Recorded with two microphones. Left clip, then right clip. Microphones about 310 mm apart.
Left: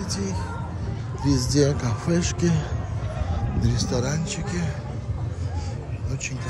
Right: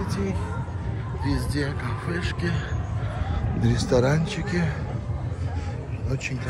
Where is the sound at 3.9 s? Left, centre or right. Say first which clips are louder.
Right 9 dB; centre.